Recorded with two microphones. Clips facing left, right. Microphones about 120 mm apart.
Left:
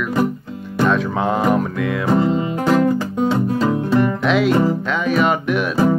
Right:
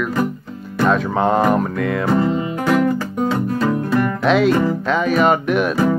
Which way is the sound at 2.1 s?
20° left (ahead or behind).